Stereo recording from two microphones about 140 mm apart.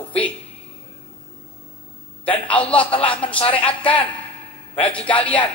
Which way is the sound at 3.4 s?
40° left (ahead or behind).